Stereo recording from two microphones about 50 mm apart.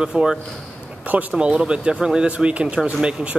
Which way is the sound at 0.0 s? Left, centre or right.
Centre.